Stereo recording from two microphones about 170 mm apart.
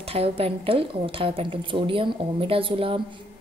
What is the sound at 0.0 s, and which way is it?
A woman's voice, 35° right (ahead or behind).